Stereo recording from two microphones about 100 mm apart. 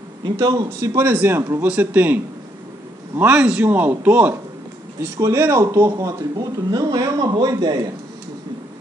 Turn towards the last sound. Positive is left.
turn(degrees=-40)  # may be behind; listen again after turning